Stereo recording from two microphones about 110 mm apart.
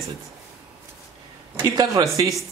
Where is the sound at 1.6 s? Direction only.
30° right (ahead or behind).